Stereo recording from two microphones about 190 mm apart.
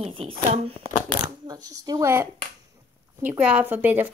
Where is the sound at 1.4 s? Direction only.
20° right (ahead or behind).